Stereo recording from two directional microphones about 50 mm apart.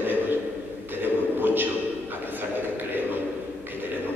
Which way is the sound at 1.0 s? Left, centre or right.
Right.